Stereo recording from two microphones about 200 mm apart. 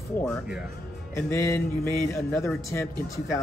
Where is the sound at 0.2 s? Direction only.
5° left (ahead or behind).